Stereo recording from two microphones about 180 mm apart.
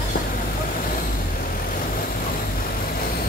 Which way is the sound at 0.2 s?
60° left (ahead or behind).